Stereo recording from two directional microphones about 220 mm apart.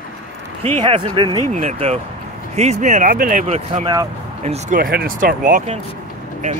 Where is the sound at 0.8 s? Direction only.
25° right (ahead or behind).